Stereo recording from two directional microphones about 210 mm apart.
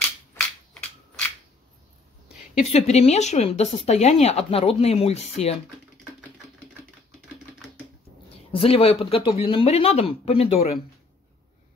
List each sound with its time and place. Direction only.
2.6 s speech: 30° left (ahead or behind)
8.5 s speech: 25° left (ahead or behind)